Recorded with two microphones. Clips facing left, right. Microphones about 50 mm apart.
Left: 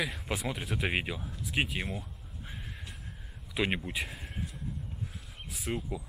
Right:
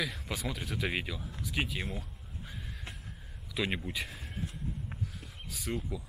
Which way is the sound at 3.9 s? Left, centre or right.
Centre.